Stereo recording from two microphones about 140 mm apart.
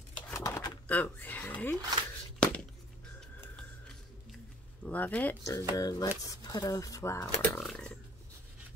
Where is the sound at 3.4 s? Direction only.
5° left (ahead or behind).